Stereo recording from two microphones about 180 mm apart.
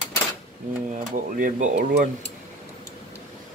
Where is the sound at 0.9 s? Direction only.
50° right (ahead or behind).